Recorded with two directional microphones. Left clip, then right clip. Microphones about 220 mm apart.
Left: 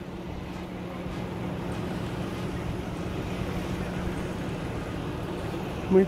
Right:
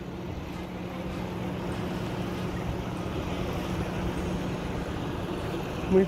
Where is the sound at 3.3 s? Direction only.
35° right (ahead or behind).